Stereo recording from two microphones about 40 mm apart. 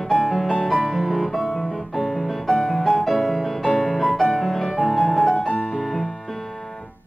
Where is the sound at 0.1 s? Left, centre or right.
Centre.